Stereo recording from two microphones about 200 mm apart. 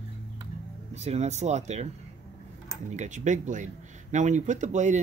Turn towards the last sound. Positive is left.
turn(degrees=-35)  # may be behind; listen again after turning